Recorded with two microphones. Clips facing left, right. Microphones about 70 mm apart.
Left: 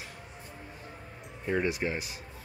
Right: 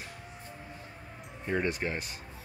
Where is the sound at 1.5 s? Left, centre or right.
Centre.